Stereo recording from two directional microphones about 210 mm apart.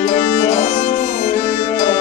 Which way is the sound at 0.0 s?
40° left (ahead or behind).